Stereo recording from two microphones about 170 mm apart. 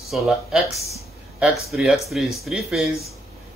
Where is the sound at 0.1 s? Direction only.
Centre (ahead or behind).